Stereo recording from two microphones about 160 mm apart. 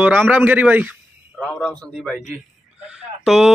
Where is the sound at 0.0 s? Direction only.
10° right (ahead or behind).